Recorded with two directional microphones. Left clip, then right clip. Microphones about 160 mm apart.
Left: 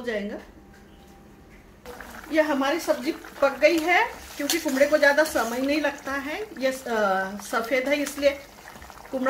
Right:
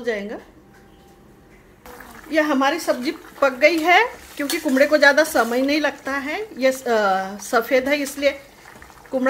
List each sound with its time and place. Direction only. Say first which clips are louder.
0.0 s speech: right 5 dB; 35° right (ahead or behind)
2.3 s speech: right 4 dB; 50° right (ahead or behind)